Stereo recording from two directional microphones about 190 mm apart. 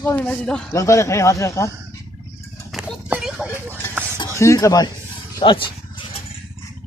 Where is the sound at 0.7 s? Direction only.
15° left (ahead or behind).